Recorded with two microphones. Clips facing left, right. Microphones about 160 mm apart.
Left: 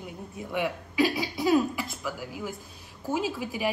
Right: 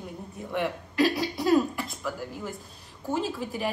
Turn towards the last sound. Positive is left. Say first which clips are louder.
# left 1 dB
turn(degrees=5)  # may be behind; listen again after turning